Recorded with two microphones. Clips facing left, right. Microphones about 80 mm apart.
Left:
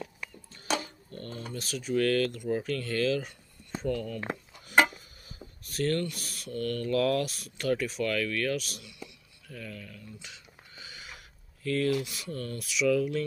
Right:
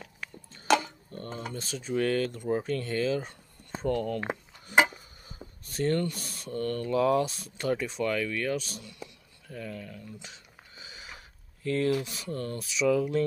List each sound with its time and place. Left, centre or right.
1.1 s dishes: right
1.5 s speech: right
3.8 s speech: right
5.7 s speech: right
10.2 s a sound: right
11.6 s speech: right